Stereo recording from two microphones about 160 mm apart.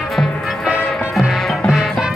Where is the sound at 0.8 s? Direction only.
10° left (ahead or behind).